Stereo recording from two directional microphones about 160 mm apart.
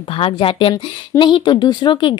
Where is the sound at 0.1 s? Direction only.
35° left (ahead or behind).